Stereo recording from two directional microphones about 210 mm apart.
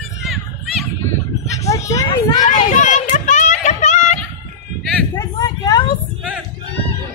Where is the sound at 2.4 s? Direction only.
35° left (ahead or behind).